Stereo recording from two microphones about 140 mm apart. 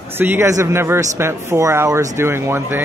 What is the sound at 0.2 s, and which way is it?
Speech, 15° right (ahead or behind).